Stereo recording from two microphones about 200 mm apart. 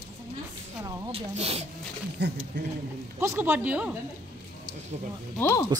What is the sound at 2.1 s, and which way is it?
Speech, 60° right (ahead or behind).